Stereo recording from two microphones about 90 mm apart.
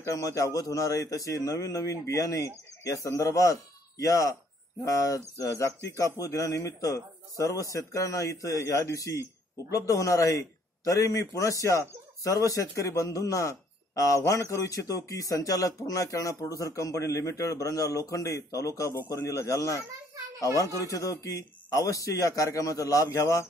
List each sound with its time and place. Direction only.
0.0 s speech: 40° left (ahead or behind)